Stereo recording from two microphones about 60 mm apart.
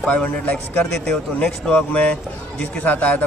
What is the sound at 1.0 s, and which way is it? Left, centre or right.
Speech, centre.